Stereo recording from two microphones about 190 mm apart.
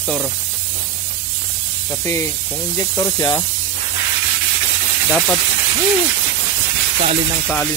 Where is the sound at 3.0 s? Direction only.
20° left (ahead or behind).